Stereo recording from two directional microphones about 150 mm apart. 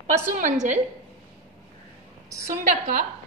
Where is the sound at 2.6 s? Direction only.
65° right (ahead or behind).